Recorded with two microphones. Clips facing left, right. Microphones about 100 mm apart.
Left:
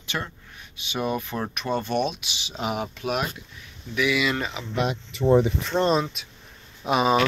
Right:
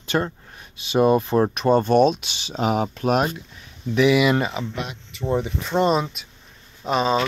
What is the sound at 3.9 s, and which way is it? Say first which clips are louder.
Speech: right 7 dB; 30° right (ahead or behind).